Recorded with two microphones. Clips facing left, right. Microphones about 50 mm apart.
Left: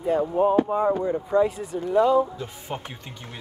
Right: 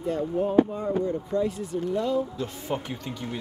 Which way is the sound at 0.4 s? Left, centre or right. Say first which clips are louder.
Left 7 dB; centre.